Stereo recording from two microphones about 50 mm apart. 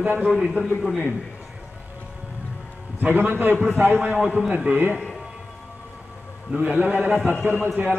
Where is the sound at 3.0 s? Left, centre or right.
Right.